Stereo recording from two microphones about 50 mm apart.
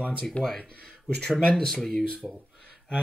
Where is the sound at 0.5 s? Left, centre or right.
Centre.